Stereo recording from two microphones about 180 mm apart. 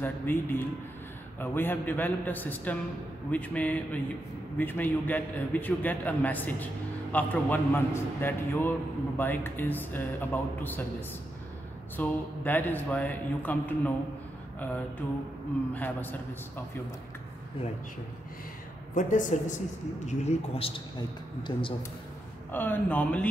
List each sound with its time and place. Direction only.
0.0 s a man's voice: 10° left (ahead or behind)
15.7 s a man's voice: 10° left (ahead or behind)
18.9 s a woman's voice: 45° left (ahead or behind); by 21.7 s 25° left (ahead or behind)
22.5 s a man's voice: 10° left (ahead or behind)